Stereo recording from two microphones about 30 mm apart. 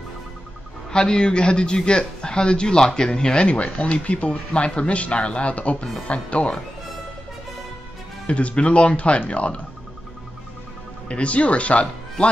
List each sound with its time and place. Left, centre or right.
0.9 s speech: left
3.4 s speech: left
8.3 s speech: left
11.1 s speech: left